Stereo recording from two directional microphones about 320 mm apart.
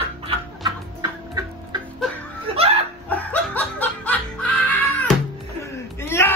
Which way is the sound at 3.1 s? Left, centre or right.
Centre.